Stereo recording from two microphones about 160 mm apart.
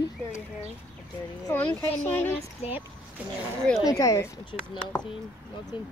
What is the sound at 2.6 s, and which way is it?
Speech, 40° left (ahead or behind).